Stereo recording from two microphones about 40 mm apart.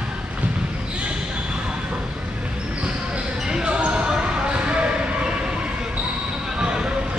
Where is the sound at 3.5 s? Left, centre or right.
Right.